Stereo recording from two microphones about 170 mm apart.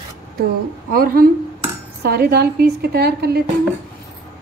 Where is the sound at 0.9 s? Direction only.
60° right (ahead or behind).